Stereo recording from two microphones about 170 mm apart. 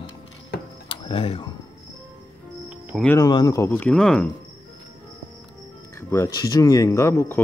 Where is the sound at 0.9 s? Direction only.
30° left (ahead or behind).